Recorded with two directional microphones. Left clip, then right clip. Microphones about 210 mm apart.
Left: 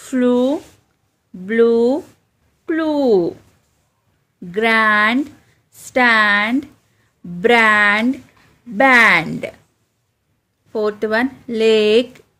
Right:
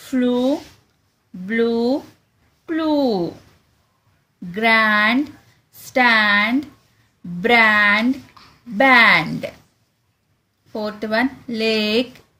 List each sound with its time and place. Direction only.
0.1 s speech: 45° left (ahead or behind)
2.6 s a sound: 45° left (ahead or behind)
4.5 s a woman's voice: 45° left (ahead or behind)
10.7 s speech: 45° left (ahead or behind)